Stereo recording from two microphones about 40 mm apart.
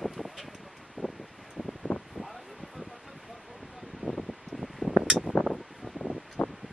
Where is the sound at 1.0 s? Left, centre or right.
Right.